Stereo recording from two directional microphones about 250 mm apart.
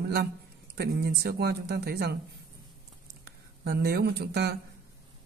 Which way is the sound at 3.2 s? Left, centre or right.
Right.